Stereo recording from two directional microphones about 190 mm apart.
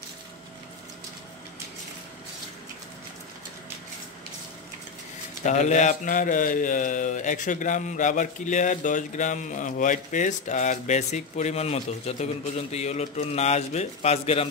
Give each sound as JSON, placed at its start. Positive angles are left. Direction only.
{"t": 5.4, "sound": "speech", "side_deg": 40}